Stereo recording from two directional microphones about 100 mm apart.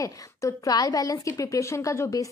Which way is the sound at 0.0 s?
35° left (ahead or behind).